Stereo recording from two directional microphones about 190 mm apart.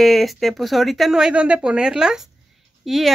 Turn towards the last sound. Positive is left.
turn(degrees=0)  # may be behind; listen again after turning